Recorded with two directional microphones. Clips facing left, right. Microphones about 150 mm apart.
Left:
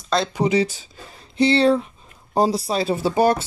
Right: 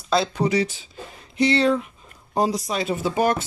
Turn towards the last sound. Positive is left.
turn(degrees=35)  # may be behind; listen again after turning